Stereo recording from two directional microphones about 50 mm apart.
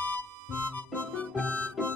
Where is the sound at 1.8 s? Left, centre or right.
Centre.